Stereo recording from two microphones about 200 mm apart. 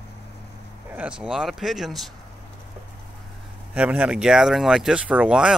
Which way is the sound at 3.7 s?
5° right (ahead or behind).